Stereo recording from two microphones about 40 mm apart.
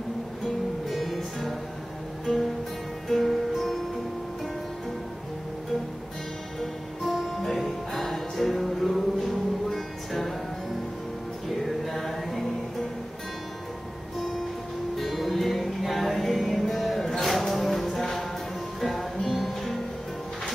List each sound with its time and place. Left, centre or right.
0.8 s music: centre
6.6 s music: centre
11.6 s music: centre
15.0 s music: centre